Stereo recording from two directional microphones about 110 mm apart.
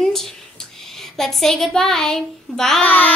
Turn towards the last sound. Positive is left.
turn(degrees=15)  # may be behind; listen again after turning